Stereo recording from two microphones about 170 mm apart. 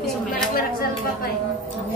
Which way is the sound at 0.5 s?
60° left (ahead or behind).